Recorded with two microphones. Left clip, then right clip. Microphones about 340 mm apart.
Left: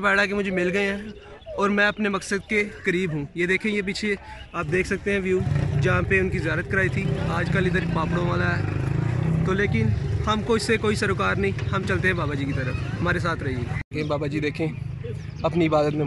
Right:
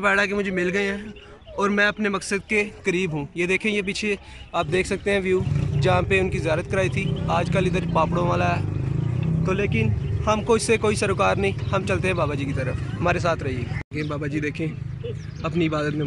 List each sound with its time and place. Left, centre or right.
0.0 s speech: centre
8.8 s vehicle: left
9.4 s speech: centre
13.9 s speech: centre